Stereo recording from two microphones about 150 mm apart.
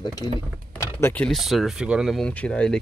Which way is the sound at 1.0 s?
10° left (ahead or behind).